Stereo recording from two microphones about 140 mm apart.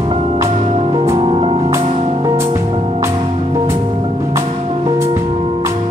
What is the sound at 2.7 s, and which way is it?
Music, 40° right (ahead or behind).